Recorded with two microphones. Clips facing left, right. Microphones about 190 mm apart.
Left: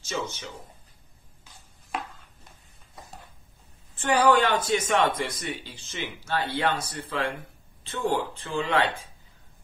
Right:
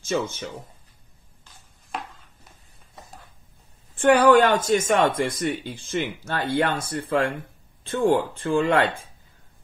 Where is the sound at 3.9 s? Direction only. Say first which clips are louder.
Right 6 dB; 50° right (ahead or behind).